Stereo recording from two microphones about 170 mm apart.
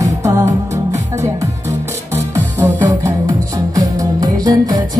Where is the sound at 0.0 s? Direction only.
20° right (ahead or behind).